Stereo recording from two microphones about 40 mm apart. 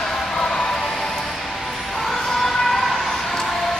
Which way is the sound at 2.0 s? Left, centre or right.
Centre.